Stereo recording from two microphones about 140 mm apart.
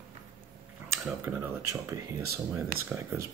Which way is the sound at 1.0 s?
10° right (ahead or behind).